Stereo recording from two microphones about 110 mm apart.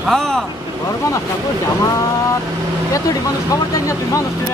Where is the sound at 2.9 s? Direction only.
30° left (ahead or behind).